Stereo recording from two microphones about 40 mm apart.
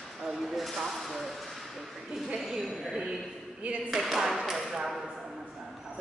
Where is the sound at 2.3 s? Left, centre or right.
Centre.